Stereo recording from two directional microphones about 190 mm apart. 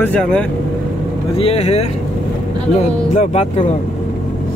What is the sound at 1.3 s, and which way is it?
Speech, 30° left (ahead or behind).